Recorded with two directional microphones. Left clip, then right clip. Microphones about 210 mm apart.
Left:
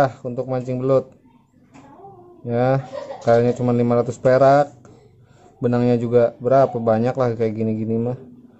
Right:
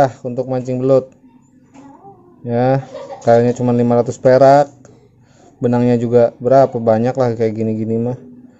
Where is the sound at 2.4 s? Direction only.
15° right (ahead or behind).